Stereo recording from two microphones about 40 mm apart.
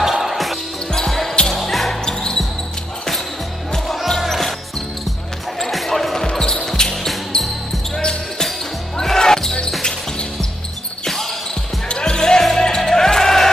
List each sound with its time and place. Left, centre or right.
0.0 s basketball bounce: centre
0.9 s basketball bounce: centre
1.5 s music: centre
2.0 s basketball bounce: centre
3.7 s music: centre
5.6 s basketball bounce: centre
11.9 s music: centre